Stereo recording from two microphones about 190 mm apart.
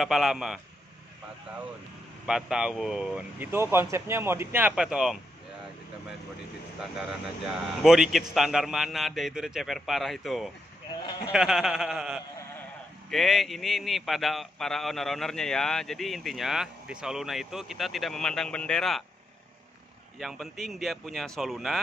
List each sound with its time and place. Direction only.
0.0 s a man's voice: centre (ahead or behind)
2.2 s a man's voice: 5° right (ahead or behind)
6.8 s a man's voice: centre (ahead or behind)
11.0 s speech: 25° left (ahead or behind)
11.3 s a man's voice: centre (ahead or behind)
20.2 s a man's voice: centre (ahead or behind)